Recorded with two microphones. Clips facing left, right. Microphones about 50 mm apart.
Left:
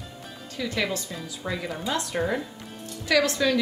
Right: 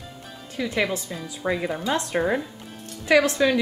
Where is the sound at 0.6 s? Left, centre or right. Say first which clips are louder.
Right 3 dB; centre.